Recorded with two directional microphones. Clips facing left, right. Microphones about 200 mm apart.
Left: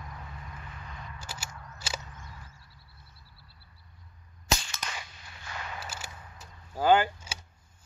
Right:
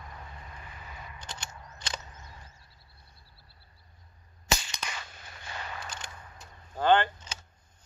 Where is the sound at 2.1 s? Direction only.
20° right (ahead or behind).